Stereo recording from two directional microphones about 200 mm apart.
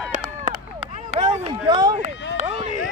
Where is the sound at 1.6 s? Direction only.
20° right (ahead or behind).